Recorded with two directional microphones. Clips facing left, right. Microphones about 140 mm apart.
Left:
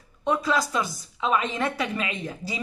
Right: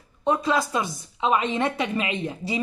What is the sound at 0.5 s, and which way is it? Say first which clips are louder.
A woman's voice: right 1 dB; 20° right (ahead or behind).